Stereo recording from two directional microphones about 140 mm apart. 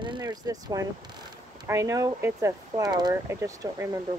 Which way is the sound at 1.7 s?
25° right (ahead or behind).